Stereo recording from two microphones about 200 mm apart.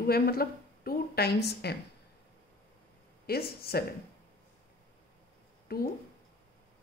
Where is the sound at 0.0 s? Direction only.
50° left (ahead or behind).